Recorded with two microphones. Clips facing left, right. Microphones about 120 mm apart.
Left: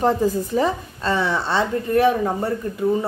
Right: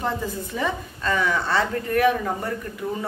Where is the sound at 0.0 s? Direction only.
40° left (ahead or behind).